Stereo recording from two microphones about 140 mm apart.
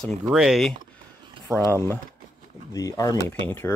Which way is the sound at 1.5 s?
20° left (ahead or behind).